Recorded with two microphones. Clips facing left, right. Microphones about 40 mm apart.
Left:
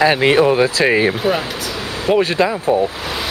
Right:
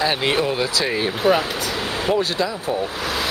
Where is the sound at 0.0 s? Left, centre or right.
Left.